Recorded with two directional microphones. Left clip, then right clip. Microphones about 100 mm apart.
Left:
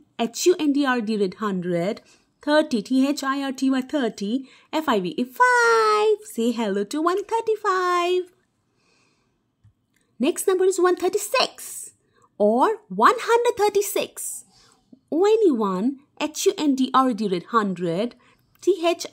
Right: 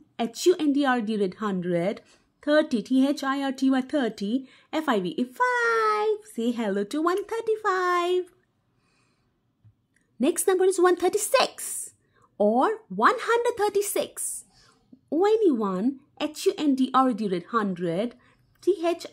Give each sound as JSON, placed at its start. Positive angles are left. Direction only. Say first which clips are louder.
{"t": 0.1, "sound": "a woman's voice", "louder": "left 3 dB", "side_deg": 30}
{"t": 5.4, "sound": "a child's voice", "louder": "left 6 dB", "side_deg": 45}
{"t": 6.6, "sound": "a woman's voice", "louder": "left 1 dB", "side_deg": 20}
{"t": 10.1, "sound": "speech", "louder": "left 2 dB", "side_deg": 20}
{"t": 12.4, "sound": "a woman's voice", "louder": "left 3 dB", "side_deg": 25}